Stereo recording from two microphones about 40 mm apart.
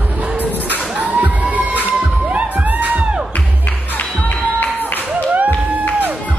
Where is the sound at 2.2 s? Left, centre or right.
Right.